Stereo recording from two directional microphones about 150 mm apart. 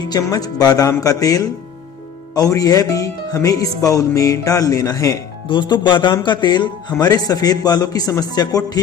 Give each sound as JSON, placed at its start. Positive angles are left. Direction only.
{"t": 0.0, "sound": "speech", "side_deg": 25}